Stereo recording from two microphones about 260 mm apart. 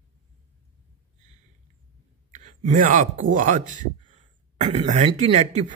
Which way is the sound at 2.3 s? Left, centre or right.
Right.